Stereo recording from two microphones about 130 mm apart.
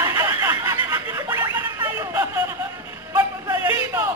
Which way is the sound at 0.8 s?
20° right (ahead or behind).